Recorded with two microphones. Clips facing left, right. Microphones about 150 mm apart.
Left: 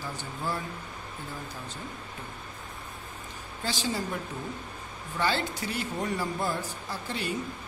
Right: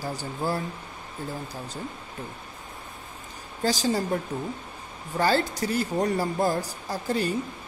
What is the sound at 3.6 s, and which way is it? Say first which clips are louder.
Speech: right 7 dB; 40° right (ahead or behind).